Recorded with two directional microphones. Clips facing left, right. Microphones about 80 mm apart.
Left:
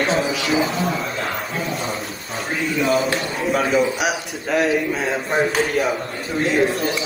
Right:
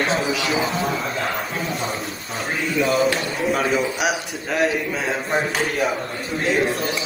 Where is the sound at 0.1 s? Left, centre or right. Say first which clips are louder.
Left 2 dB; left.